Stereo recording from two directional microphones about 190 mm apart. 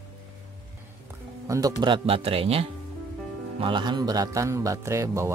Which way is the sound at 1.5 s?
20° right (ahead or behind).